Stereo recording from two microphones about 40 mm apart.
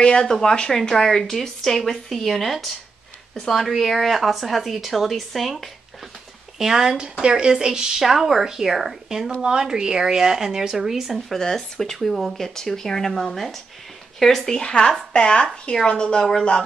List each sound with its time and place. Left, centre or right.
0.0 s a woman's voice: left; by 5.7 s centre
6.6 s speech: centre
8.0 s speech: centre
9.4 s speech: centre
11.2 s a woman's voice: centre
12.0 s a woman's voice: centre
14.6 s speech: left